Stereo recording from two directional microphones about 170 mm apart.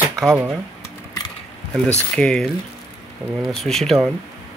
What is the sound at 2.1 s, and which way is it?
Speech, 5° left (ahead or behind).